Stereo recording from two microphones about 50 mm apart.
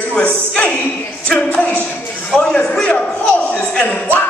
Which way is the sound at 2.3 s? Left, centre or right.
Centre.